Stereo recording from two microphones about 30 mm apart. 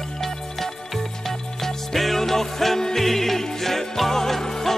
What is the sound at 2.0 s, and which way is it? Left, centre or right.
Music, centre.